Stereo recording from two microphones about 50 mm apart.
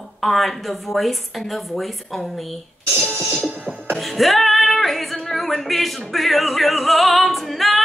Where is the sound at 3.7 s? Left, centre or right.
Centre.